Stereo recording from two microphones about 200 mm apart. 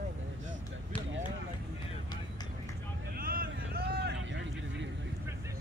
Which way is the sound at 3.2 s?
45° right (ahead or behind).